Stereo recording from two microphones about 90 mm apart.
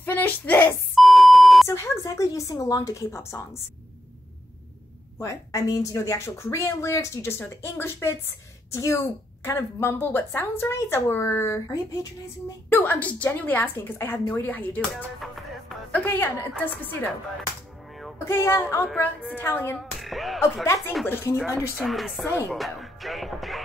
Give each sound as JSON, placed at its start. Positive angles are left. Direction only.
{"t": 0.0, "sound": "speech", "side_deg": 20}
{"t": 1.0, "sound": "beep", "side_deg": 0}
{"t": 1.7, "sound": "a woman's voice", "side_deg": 35}
{"t": 5.2, "sound": "a woman's voice", "side_deg": 35}
{"t": 12.6, "sound": "a woman's voice", "side_deg": 25}
{"t": 15.1, "sound": "music", "side_deg": 0}
{"t": 15.9, "sound": "a woman's voice", "side_deg": 20}
{"t": 18.2, "sound": "a woman's voice", "side_deg": 25}
{"t": 19.8, "sound": "speech", "side_deg": 0}
{"t": 21.0, "sound": "a woman's voice", "side_deg": 25}
{"t": 21.7, "sound": "music", "side_deg": 0}
{"t": 22.2, "sound": "a woman's voice", "side_deg": 30}
{"t": 22.5, "sound": "music", "side_deg": 0}